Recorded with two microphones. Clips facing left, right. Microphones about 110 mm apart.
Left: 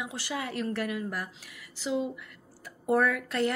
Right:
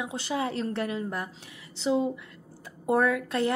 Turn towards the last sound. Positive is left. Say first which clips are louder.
# right 2 dB
turn(degrees=-20)  # may be behind; listen again after turning